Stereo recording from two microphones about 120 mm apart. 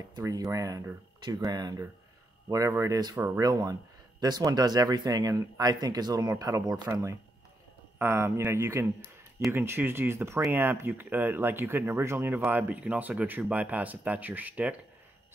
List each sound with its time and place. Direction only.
0.1 s speech: 30° right (ahead or behind); by 14.8 s 10° right (ahead or behind)